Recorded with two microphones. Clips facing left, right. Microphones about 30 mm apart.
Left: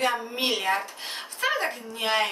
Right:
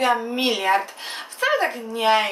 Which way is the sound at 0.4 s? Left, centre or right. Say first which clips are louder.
Right 5 dB; centre.